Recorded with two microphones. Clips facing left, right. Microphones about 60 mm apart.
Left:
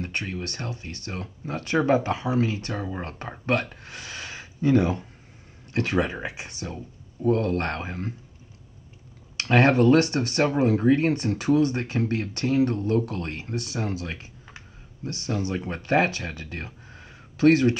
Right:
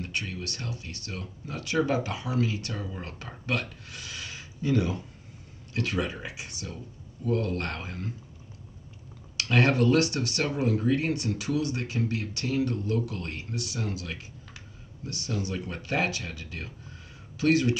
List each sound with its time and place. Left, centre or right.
0.0 s speech: left
9.4 s speech: left